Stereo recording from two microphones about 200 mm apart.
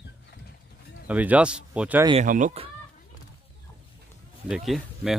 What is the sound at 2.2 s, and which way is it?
Speech, 40° right (ahead or behind).